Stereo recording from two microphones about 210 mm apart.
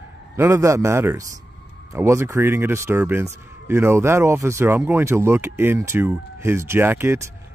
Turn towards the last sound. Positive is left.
turn(degrees=-10)  # may be behind; listen again after turning